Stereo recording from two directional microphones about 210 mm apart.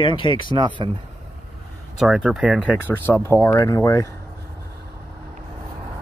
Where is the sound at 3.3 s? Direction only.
15° left (ahead or behind).